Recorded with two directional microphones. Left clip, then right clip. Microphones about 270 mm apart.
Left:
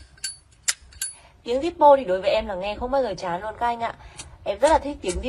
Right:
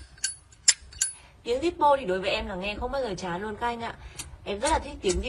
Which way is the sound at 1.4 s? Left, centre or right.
Centre.